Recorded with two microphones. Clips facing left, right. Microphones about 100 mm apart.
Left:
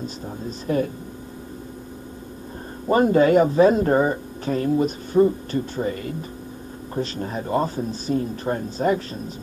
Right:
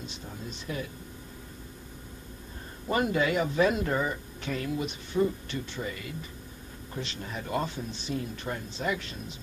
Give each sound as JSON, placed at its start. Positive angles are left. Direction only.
{"t": 0.0, "sound": "speech", "side_deg": 45}
{"t": 2.9, "sound": "speech", "side_deg": 40}